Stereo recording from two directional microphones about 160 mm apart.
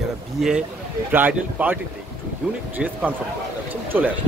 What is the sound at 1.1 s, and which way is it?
Speech, 10° right (ahead or behind).